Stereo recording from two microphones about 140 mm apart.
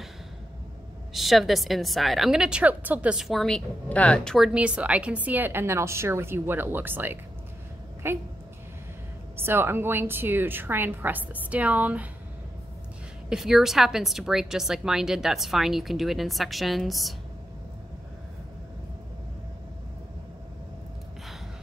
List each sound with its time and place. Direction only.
1.1 s a woman's voice: centre (ahead or behind)
4.5 s a woman's voice: 10° right (ahead or behind)
9.4 s a woman's voice: 15° right (ahead or behind)
13.3 s a woman's voice: 5° right (ahead or behind)